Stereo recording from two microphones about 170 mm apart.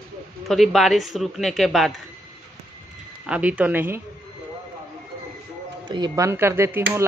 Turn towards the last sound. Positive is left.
turn(degrees=-15)  # may be behind; listen again after turning